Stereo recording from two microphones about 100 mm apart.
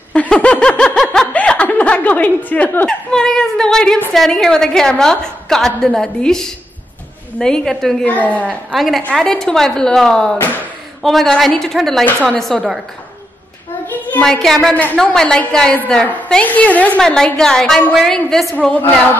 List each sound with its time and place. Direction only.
0.1 s snicker: 10° left (ahead or behind)
3.1 s a woman's voice: 5° left (ahead or behind)
8.1 s a woman's voice: 15° left (ahead or behind)
8.7 s a woman's voice: centre (ahead or behind)
14.2 s a woman's voice: 5° left (ahead or behind)